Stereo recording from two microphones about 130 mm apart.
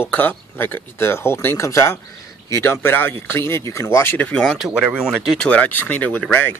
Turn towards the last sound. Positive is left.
turn(degrees=15)  # may be behind; listen again after turning